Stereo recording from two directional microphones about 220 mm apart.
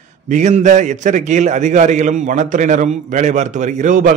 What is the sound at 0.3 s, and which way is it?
A man's voice, 30° right (ahead or behind).